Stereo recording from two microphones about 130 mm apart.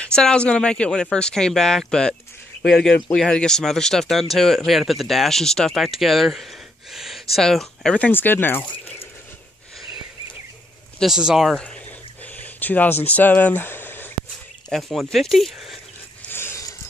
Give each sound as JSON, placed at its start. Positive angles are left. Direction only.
{"t": 0.0, "sound": "speech", "side_deg": 5}
{"t": 11.0, "sound": "speech", "side_deg": -5}
{"t": 11.5, "sound": "speech", "side_deg": 10}
{"t": 12.4, "sound": "a sound", "side_deg": 15}
{"t": 13.0, "sound": "speech", "side_deg": 10}
{"t": 14.7, "sound": "speech", "side_deg": 0}
{"t": 16.3, "sound": "dog", "side_deg": 20}